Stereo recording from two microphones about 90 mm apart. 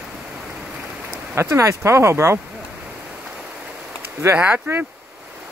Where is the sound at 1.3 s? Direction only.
30° right (ahead or behind).